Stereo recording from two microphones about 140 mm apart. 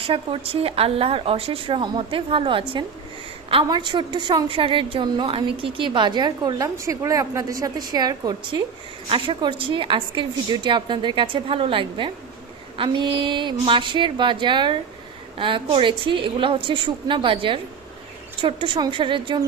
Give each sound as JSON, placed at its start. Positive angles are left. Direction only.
{"t": 0.0, "sound": "a woman's voice", "side_deg": -40}
{"t": 9.1, "sound": "a woman's voice", "side_deg": -40}